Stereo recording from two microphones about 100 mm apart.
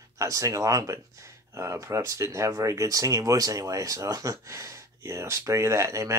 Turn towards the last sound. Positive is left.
turn(degrees=-30)  # may be behind; listen again after turning